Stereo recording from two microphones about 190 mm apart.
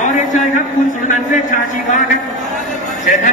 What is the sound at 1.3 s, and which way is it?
Speech, 40° left (ahead or behind).